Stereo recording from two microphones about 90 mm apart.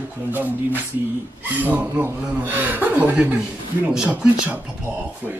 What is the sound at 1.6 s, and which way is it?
A man's voice, 15° right (ahead or behind).